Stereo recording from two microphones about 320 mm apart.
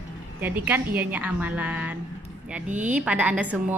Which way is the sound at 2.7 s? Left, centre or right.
Right.